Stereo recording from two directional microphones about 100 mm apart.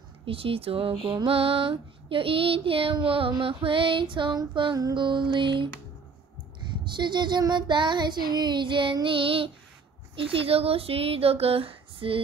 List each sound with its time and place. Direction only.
0.2 s speech: 65° right (ahead or behind)
1.0 s child singing: 65° right (ahead or behind)
6.8 s child singing: 50° right (ahead or behind)
10.1 s speech: 65° right (ahead or behind)